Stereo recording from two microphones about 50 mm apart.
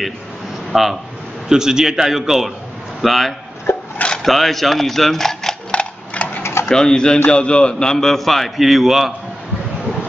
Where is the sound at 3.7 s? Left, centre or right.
Left.